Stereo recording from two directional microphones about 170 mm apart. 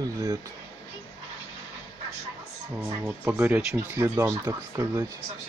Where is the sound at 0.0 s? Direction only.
20° right (ahead or behind).